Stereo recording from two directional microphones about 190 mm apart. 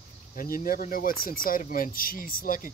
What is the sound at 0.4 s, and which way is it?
Speech, 50° left (ahead or behind).